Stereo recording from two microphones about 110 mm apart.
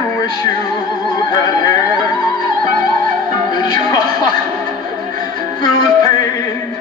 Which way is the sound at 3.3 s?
40° left (ahead or behind).